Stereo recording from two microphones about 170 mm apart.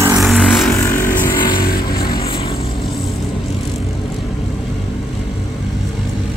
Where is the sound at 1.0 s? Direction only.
55° left (ahead or behind).